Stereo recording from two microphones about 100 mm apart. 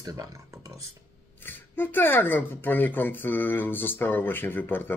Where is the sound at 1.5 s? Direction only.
20° left (ahead or behind).